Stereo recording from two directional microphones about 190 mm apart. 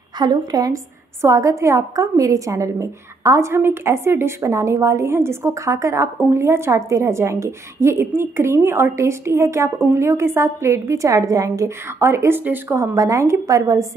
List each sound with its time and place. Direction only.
0.2 s a woman's voice: 20° right (ahead or behind)